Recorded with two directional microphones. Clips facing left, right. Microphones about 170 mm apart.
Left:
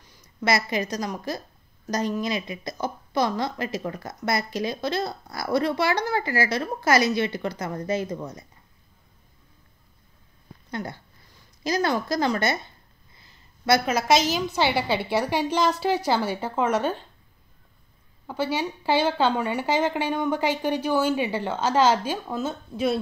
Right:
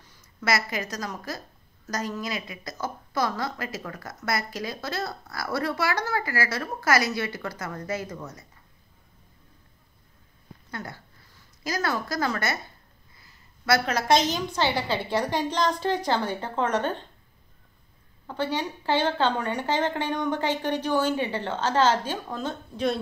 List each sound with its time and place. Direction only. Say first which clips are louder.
0.1 s a woman's voice: left 3 dB; 20° left (ahead or behind)
10.7 s a woman's voice: left 5 dB; 20° left (ahead or behind)
13.2 s a sound: left 6 dB; 20° left (ahead or behind)
13.8 s speech: left 1 dB; 5° left (ahead or behind)
18.2 s speech: left 2 dB; 10° left (ahead or behind)